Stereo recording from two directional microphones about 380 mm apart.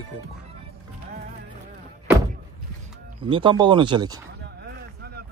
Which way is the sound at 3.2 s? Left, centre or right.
Centre.